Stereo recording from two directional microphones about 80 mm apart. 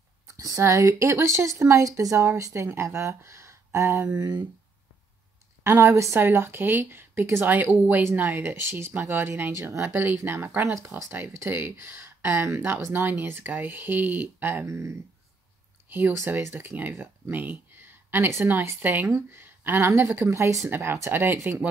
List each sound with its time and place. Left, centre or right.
0.3 s speech: right
5.6 s speech: right
15.9 s speech: right